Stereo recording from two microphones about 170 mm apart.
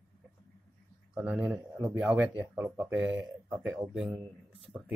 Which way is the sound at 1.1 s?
10° right (ahead or behind).